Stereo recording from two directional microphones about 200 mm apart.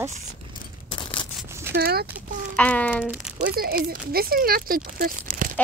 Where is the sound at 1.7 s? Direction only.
50° right (ahead or behind).